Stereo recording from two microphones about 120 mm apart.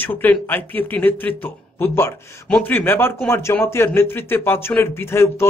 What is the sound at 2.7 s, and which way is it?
Speech, 20° left (ahead or behind).